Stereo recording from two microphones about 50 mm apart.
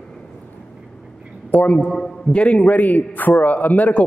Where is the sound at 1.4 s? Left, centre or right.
Left.